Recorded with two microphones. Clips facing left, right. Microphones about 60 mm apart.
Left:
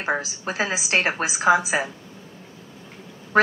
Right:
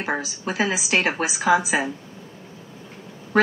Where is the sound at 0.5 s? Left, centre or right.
Left.